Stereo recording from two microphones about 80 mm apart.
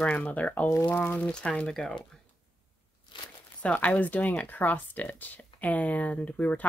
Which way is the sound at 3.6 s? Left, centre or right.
Centre.